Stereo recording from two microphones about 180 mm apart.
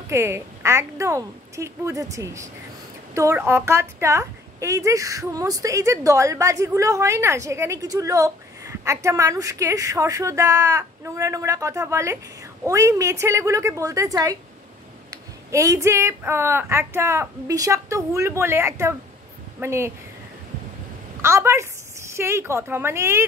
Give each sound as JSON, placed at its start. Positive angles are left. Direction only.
{"t": 0.1, "sound": "a woman's voice", "side_deg": -15}
{"t": 15.5, "sound": "a woman's voice", "side_deg": -15}
{"t": 21.2, "sound": "a woman's voice", "side_deg": -15}